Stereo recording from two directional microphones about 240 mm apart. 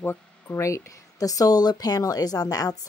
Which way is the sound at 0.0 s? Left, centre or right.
Centre.